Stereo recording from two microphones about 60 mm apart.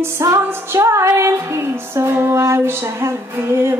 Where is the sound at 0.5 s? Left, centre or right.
Right.